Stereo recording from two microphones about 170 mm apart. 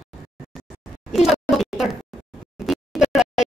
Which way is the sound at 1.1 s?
Centre (ahead or behind).